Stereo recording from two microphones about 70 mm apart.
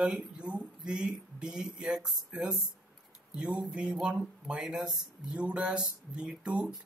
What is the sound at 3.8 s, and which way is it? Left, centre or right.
Speech, centre.